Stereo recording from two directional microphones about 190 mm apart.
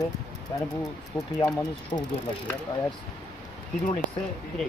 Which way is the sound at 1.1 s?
20° left (ahead or behind).